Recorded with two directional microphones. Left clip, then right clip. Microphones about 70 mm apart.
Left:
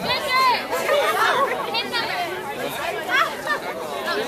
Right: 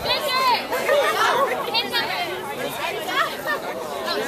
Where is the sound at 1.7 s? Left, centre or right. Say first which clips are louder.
Right 1 dB; right.